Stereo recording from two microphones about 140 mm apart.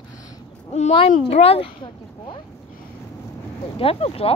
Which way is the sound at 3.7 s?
45° left (ahead or behind).